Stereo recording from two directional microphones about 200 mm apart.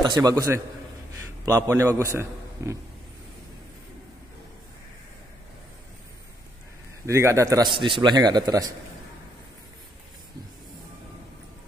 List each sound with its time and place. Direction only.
0.0 s a man's voice: 20° right (ahead or behind)
7.1 s a man's voice: 15° right (ahead or behind)